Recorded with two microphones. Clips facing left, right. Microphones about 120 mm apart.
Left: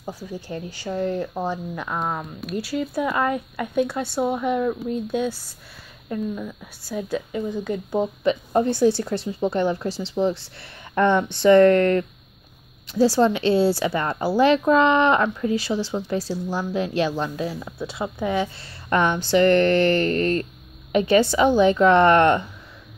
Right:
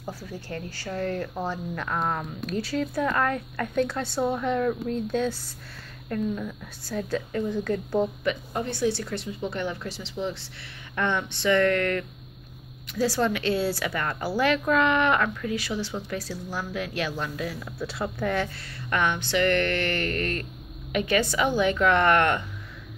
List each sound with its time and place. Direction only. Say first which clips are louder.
0.0 s speech: left 4 dB; 15° left (ahead or behind)
8.2 s a woman's voice: left 8 dB; 30° left (ahead or behind); by 18.5 s 15° left (ahead or behind)
18.9 s a woman's voice: left 6 dB; 35° left (ahead or behind)